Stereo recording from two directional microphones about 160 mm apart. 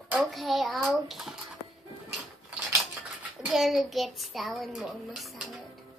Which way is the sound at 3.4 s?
Centre (ahead or behind).